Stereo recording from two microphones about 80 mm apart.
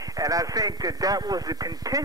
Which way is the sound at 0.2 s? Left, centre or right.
Right.